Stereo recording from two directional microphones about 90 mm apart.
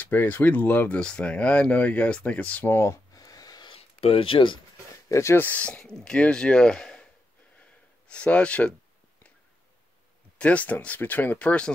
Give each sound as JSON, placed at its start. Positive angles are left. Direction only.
{"t": 0.0, "sound": "speech", "side_deg": 20}
{"t": 2.7, "sound": "a sound", "side_deg": 30}
{"t": 3.6, "sound": "a sound", "side_deg": 90}
{"t": 5.1, "sound": "speech", "side_deg": 30}
{"t": 5.4, "sound": "speech", "side_deg": 15}
{"t": 8.1, "sound": "speech", "side_deg": 15}
{"t": 10.4, "sound": "speech", "side_deg": 15}